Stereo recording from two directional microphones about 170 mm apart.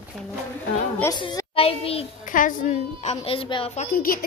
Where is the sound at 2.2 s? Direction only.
50° left (ahead or behind); by 3.7 s 30° left (ahead or behind).